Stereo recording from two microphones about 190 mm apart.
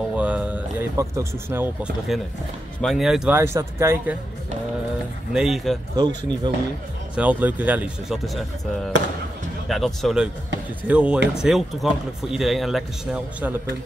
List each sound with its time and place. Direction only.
0.1 s speech: 5° right (ahead or behind)
3.3 s speech: 15° right (ahead or behind)
5.3 s speech: centre (ahead or behind)
5.9 s speech: 20° right (ahead or behind)
7.2 s speech: 10° right (ahead or behind)